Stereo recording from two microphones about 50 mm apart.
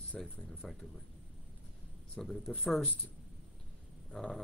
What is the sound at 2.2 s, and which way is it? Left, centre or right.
Speech, centre.